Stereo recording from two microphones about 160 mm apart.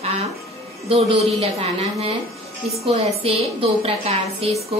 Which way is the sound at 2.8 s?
35° right (ahead or behind).